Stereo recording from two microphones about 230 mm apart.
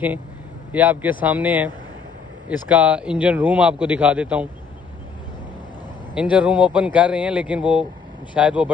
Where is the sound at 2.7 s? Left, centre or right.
Centre.